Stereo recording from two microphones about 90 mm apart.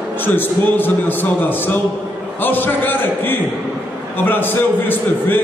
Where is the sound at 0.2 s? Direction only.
20° left (ahead or behind).